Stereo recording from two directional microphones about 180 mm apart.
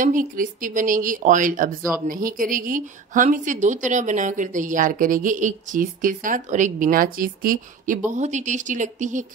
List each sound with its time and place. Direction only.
0.0 s a woman's voice: 50° right (ahead or behind)